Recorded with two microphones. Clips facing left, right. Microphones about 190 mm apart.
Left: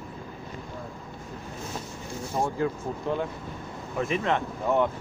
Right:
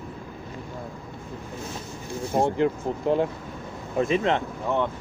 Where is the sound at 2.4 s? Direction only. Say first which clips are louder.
Right 5 dB; 25° right (ahead or behind).